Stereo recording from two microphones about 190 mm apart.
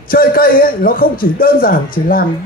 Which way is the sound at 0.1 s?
50° left (ahead or behind).